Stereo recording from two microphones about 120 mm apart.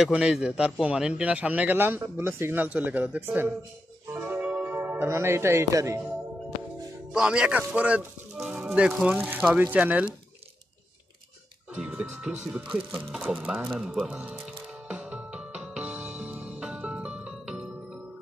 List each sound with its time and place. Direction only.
0.0 s a man's voice: 5° right (ahead or behind)
4.1 s music: 20° right (ahead or behind)
7.1 s a man's voice: 5° right (ahead or behind)
11.7 s a man's voice: 10° right (ahead or behind)
14.9 s music: 10° right (ahead or behind)